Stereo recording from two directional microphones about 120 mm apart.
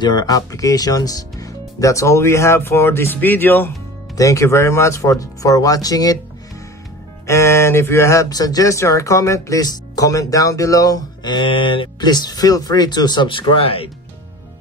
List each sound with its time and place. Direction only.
0.0 s speech: 35° left (ahead or behind); by 3.7 s 15° left (ahead or behind)
4.1 s speech: 25° left (ahead or behind)
7.2 s speech: 25° left (ahead or behind); by 13.8 s 50° left (ahead or behind)